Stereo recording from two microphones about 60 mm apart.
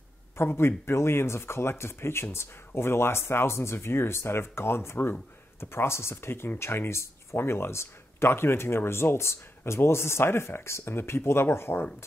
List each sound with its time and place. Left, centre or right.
0.4 s speech: left